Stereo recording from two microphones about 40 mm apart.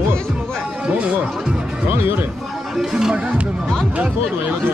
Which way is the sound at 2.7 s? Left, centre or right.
Centre.